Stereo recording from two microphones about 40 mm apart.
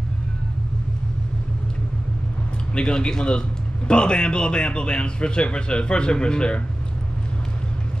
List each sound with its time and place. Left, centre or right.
2.7 s a man's voice: left